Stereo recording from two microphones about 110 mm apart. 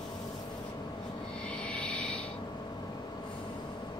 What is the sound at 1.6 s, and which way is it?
Rub, 10° left (ahead or behind).